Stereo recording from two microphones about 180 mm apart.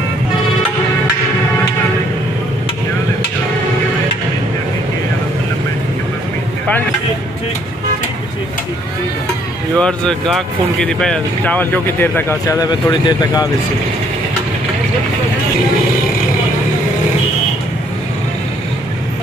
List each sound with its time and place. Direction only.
9.8 s speech: 5° left (ahead or behind); by 13.5 s 20° left (ahead or behind)